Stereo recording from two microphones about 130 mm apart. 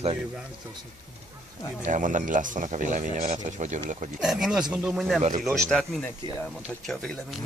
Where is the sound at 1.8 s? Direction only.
80° right; by 4.1 s 65° right (ahead or behind).